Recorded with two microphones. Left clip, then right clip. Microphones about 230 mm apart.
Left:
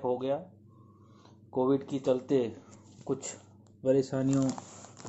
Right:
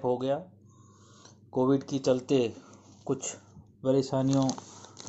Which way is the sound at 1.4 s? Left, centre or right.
Right.